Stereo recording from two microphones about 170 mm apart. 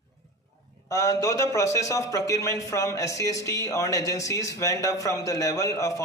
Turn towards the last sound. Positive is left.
turn(degrees=20)  # may be behind; listen again after turning